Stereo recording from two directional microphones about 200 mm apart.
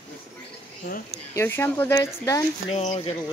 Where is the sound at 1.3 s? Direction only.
10° left (ahead or behind).